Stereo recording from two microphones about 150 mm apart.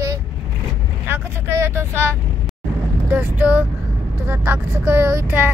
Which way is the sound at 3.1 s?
10° right (ahead or behind).